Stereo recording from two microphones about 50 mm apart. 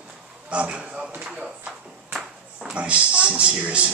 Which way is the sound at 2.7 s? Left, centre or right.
Right.